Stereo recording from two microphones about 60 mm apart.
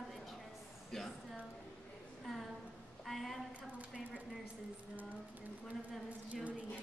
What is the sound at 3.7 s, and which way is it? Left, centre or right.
Speech, centre.